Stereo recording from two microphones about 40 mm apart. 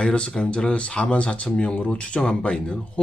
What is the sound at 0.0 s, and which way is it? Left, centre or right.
Speech, left.